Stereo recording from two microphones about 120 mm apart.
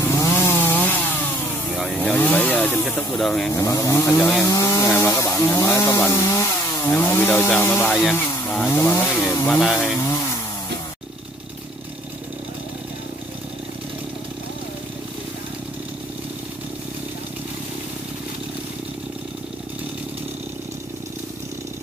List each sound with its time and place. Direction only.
0.0 s chainsaw: 20° left (ahead or behind)
2.0 s speech: 15° left (ahead or behind)
3.5 s chainsaw: 25° left (ahead or behind)
5.9 s speech: 20° left (ahead or behind)
8.1 s chainsaw: 15° left (ahead or behind)
9.5 s speech: centre (ahead or behind)
9.9 s chainsaw: 25° left (ahead or behind)